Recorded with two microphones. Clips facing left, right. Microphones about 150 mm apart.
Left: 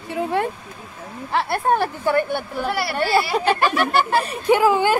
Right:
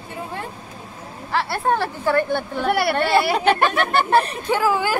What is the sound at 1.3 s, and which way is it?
Speech, 20° left (ahead or behind).